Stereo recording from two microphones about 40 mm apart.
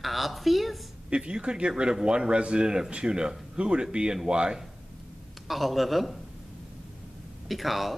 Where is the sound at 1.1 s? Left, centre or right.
Right.